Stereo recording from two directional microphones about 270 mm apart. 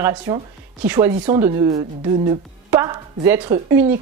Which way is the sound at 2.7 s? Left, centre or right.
Centre.